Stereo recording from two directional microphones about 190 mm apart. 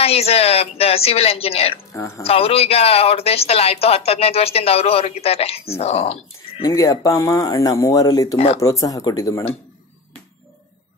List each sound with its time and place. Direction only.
0.0 s speech: 30° left (ahead or behind)
1.9 s speech: 15° left (ahead or behind)
2.2 s speech: 30° left (ahead or behind)
6.6 s speech: 15° left (ahead or behind)